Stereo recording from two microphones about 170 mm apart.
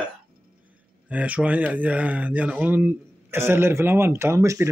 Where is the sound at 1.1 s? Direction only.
10° right (ahead or behind).